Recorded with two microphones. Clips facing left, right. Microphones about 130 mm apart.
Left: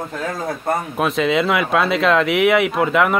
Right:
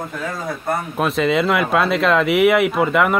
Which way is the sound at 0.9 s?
Centre (ahead or behind).